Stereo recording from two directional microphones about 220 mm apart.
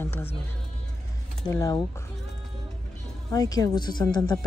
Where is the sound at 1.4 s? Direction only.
15° left (ahead or behind).